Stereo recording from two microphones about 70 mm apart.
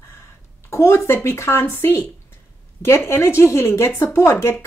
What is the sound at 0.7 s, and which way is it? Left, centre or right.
Speech, left.